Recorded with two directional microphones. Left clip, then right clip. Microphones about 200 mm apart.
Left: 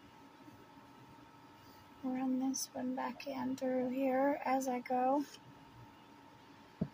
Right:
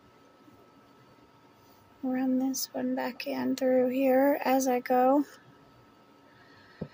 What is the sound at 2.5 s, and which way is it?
Speech, 55° right (ahead or behind).